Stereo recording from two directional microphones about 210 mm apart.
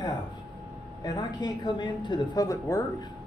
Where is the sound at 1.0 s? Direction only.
20° left (ahead or behind).